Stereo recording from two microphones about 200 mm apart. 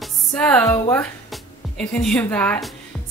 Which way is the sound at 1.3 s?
Centre (ahead or behind).